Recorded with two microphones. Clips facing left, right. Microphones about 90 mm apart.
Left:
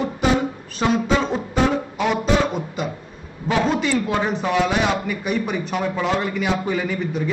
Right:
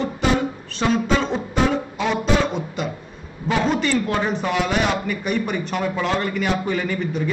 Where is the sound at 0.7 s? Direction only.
5° left (ahead or behind).